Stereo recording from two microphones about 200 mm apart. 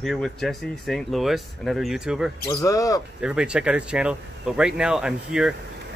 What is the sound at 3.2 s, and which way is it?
Speech, 5° right (ahead or behind).